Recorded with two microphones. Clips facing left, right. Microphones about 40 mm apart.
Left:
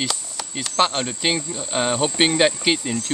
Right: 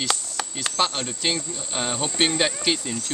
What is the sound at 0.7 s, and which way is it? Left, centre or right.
Speech, left.